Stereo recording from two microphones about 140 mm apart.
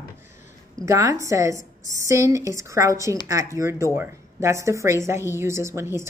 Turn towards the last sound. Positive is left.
turn(degrees=-20)  # may be behind; listen again after turning